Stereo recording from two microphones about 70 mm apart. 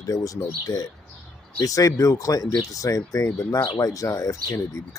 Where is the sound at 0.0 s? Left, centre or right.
Left.